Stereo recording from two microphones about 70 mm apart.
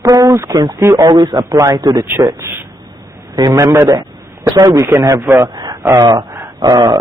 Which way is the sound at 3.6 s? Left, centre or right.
Right.